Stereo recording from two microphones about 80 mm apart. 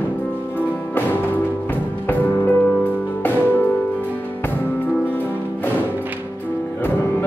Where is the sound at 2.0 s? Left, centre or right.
Left.